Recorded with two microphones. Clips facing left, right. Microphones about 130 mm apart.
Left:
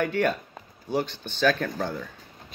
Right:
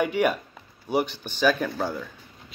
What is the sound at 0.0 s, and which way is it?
Speech, 15° right (ahead or behind).